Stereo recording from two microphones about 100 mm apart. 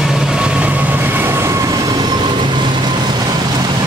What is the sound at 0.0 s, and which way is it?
Vehicle, 5° right (ahead or behind).